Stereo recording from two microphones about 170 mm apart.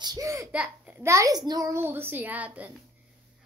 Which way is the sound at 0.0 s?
20° right (ahead or behind).